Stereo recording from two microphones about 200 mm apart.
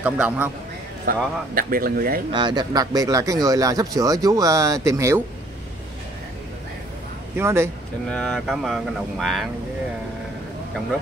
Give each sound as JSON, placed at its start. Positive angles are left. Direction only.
{"t": 0.0, "sound": "speech", "side_deg": -5}
{"t": 1.0, "sound": "a man's voice", "side_deg": -45}
{"t": 2.3, "sound": "speech", "side_deg": -20}
{"t": 7.3, "sound": "speech", "side_deg": -15}
{"t": 8.1, "sound": "speech", "side_deg": 0}